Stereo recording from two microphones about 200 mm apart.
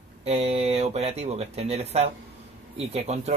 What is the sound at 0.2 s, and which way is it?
Speech, 30° right (ahead or behind).